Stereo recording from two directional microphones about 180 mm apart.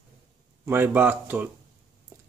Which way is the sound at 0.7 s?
10° right (ahead or behind).